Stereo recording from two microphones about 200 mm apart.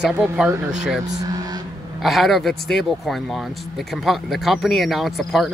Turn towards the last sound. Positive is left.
turn(degrees=0)  # may be behind; listen again after turning